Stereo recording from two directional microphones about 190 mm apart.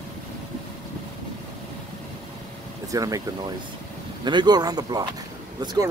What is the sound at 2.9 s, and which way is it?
Speech, 20° right (ahead or behind).